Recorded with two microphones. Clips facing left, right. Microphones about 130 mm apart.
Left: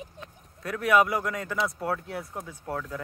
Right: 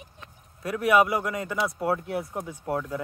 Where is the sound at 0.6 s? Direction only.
5° right (ahead or behind).